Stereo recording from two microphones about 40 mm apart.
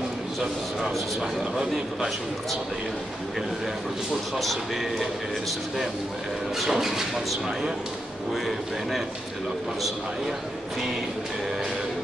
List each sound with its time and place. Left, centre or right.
0.8 s a man's voice: right
4.4 s a man's voice: centre
6.6 s speech: centre
9.8 s a man's voice: centre